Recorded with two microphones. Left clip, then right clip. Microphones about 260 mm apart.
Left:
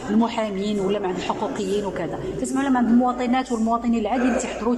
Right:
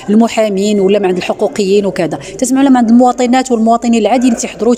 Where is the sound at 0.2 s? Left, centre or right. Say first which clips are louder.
Right 13 dB; right.